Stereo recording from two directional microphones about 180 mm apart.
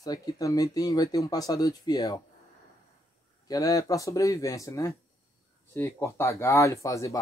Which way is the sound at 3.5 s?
20° left (ahead or behind).